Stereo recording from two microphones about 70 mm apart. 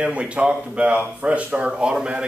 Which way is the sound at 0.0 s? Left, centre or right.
Centre.